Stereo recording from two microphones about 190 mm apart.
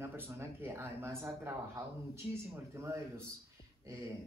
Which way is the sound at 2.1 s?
15° right (ahead or behind).